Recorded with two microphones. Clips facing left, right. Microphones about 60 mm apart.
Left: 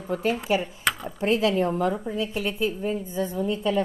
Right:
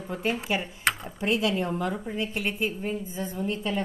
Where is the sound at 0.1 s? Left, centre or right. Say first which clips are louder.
Left 4 dB; right.